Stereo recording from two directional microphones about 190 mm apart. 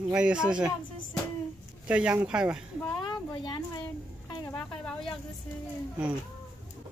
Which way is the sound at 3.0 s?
25° left (ahead or behind).